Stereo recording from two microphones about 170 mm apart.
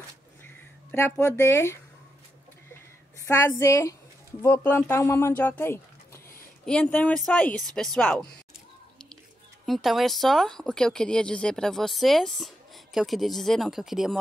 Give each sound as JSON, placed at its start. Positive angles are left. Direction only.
{"t": 0.9, "sound": "speech", "side_deg": 15}
{"t": 3.3, "sound": "speech", "side_deg": 15}
{"t": 9.7, "sound": "speech", "side_deg": 0}